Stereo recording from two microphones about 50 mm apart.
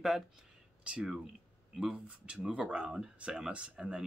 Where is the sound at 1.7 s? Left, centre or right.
Centre.